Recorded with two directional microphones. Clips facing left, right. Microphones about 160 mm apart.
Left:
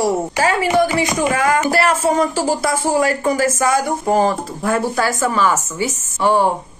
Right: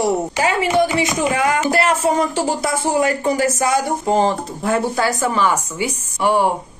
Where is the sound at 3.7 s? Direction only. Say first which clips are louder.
Left 1 dB; 25° right (ahead or behind).